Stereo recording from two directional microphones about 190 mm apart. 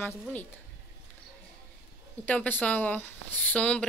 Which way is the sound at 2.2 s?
10° left (ahead or behind).